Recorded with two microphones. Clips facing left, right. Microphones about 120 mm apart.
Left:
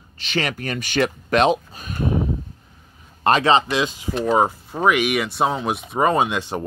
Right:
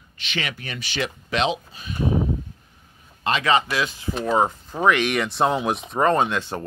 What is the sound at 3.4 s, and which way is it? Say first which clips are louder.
Speech: left 3 dB; 25° left (ahead or behind).